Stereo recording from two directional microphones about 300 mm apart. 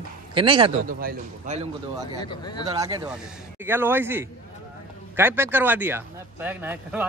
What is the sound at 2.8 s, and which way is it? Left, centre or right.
Speech, centre.